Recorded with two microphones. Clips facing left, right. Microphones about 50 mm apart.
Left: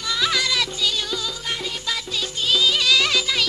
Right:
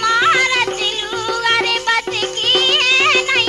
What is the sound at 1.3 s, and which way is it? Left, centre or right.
Music, right.